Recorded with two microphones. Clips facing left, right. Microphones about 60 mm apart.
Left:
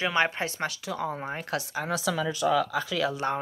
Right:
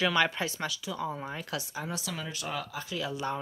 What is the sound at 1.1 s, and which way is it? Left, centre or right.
Speech, left.